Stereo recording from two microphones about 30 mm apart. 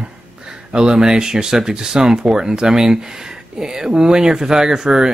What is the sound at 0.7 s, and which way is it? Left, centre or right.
Speech, right.